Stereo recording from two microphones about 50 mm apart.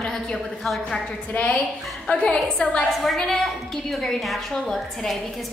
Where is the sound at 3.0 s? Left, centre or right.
Centre.